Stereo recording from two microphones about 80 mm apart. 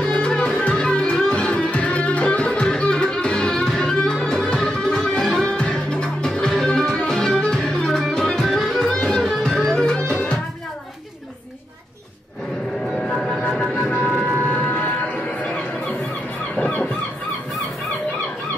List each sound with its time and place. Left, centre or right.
0.0 s music: centre
12.9 s a sound: centre
13.8 s music: centre
16.5 s fowl: centre